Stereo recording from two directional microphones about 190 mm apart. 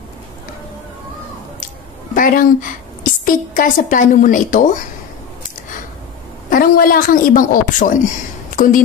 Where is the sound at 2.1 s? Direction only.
45° left (ahead or behind).